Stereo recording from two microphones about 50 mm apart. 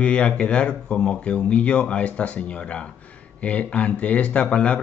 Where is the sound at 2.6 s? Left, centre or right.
Centre.